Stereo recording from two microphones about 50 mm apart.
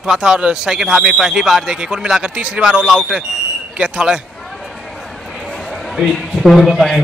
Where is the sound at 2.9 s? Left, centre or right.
Centre.